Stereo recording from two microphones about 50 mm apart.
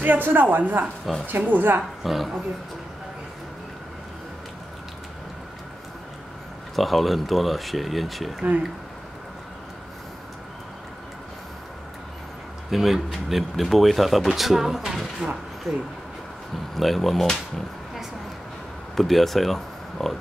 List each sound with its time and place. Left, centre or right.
0.0 s a woman's voice: right
2.0 s speech: centre
6.7 s speech: centre
12.7 s speech: centre
18.9 s speech: centre